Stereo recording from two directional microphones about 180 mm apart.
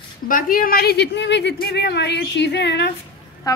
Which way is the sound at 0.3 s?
55° left (ahead or behind).